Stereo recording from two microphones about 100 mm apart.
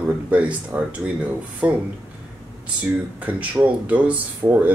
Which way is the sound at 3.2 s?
15° right (ahead or behind).